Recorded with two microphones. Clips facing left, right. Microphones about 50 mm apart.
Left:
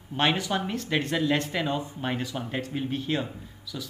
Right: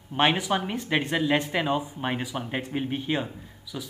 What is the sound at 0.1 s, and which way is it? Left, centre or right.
Speech, centre.